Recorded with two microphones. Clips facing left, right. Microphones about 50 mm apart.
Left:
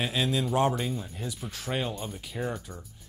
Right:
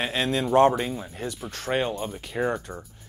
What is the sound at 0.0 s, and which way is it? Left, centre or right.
Speech, right.